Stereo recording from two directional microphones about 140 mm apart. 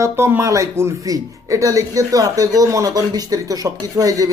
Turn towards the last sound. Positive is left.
turn(degrees=-25)  # may be behind; listen again after turning